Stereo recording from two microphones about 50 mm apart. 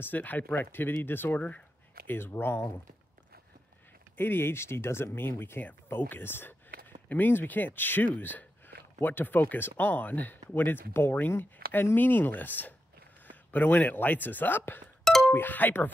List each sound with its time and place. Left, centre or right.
0.0 s speech: left
0.7 s speech: left
4.2 s speech: left